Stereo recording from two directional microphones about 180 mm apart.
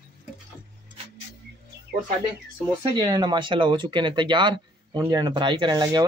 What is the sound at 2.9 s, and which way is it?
Speech, 25° right (ahead or behind).